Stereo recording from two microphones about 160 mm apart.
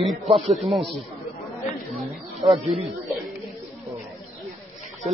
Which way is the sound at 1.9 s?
Centre (ahead or behind).